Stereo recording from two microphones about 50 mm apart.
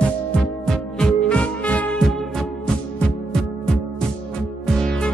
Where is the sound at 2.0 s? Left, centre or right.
Centre.